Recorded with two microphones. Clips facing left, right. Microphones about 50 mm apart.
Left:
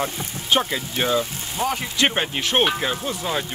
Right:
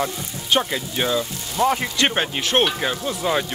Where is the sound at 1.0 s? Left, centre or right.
Centre.